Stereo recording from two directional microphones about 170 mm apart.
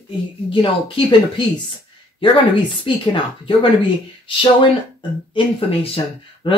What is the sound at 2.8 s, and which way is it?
Speech, 30° left (ahead or behind).